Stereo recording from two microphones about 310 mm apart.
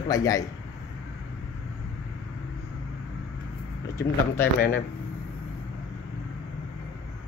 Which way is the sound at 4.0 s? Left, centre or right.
Centre.